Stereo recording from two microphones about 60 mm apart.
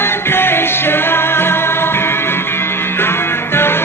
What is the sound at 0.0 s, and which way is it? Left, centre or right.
Music, left.